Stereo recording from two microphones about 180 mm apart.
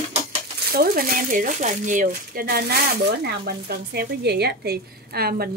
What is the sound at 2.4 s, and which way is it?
Speech, 60° right (ahead or behind).